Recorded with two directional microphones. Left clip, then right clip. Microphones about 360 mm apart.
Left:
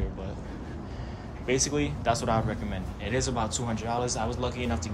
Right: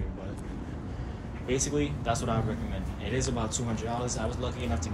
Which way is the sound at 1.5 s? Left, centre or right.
Centre.